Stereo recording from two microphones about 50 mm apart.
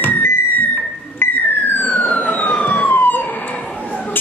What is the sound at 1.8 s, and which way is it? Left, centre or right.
Emergency vehicle, left.